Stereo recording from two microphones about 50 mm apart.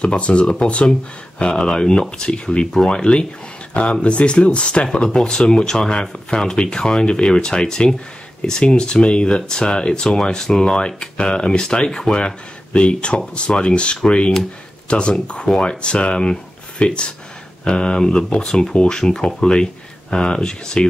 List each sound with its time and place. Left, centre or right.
0.0 s speech: left